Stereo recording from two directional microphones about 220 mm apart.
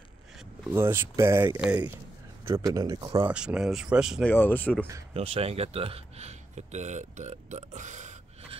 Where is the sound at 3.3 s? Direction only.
5° right (ahead or behind).